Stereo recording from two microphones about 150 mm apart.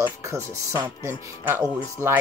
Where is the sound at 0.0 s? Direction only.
20° right (ahead or behind).